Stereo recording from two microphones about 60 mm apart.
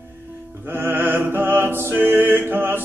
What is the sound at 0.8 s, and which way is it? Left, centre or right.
Music, right.